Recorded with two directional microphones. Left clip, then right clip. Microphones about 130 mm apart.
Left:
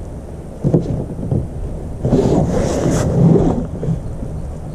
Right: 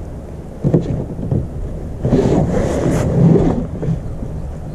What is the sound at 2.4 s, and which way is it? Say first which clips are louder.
Wind noise: even; 15° right (ahead or behind).